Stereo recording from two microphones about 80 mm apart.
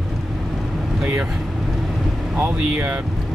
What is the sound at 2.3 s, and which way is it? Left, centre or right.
Speech, right.